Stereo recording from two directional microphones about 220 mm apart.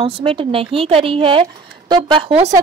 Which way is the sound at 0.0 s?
25° right (ahead or behind).